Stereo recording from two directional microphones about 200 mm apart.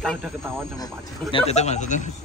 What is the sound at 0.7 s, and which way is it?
A man's voice, 20° left (ahead or behind).